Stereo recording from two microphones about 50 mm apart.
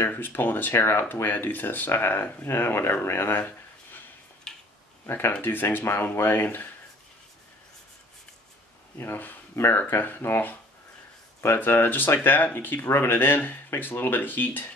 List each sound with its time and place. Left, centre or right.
0.0 s speech: left
4.5 s a sound: centre
5.0 s speech: left
8.9 s speech: left